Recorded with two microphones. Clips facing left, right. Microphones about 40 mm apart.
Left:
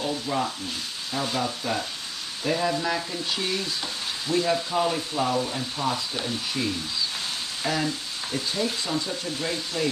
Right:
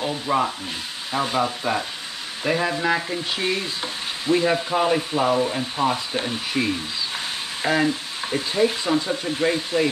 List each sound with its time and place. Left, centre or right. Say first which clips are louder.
0.0 s frying: right 5 dB; right
7.6 s speech: right 7 dB; right